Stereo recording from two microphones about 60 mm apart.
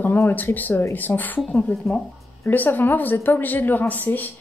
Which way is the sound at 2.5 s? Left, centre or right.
Left.